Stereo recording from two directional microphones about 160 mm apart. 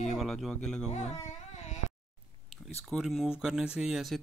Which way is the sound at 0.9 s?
45° left (ahead or behind).